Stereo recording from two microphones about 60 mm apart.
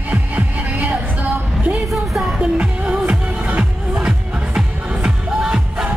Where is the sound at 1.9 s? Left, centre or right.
Centre.